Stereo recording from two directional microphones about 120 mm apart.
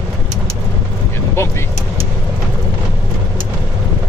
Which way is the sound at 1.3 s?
20° left (ahead or behind).